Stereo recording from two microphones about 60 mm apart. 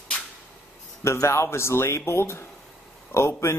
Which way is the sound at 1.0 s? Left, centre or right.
Left.